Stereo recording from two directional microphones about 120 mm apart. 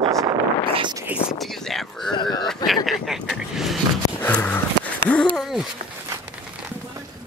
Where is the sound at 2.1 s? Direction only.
40° left (ahead or behind).